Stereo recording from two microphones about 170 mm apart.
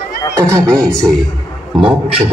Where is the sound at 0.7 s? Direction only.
5° left (ahead or behind).